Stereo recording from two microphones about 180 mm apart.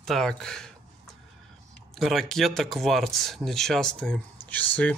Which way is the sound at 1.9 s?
Centre (ahead or behind).